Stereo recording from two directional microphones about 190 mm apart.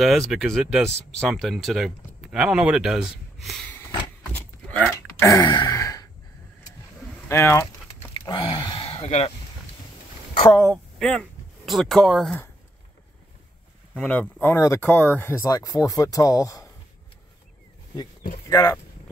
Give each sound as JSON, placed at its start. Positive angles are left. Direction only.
{"t": 0.3, "sound": "speech", "side_deg": 0}
{"t": 3.7, "sound": "a sound", "side_deg": 10}
{"t": 7.2, "sound": "speech", "side_deg": 15}
{"t": 8.3, "sound": "a sound", "side_deg": 25}
{"t": 11.0, "sound": "speech", "side_deg": 0}
{"t": 13.9, "sound": "speech", "side_deg": 5}
{"t": 18.5, "sound": "speech", "side_deg": 15}